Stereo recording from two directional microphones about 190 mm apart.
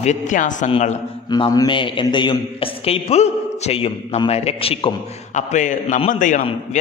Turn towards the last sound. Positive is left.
turn(degrees=40)  # may be behind; listen again after turning